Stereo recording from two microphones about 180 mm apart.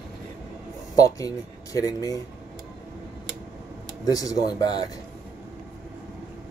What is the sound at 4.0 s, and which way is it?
Speech, 20° left (ahead or behind).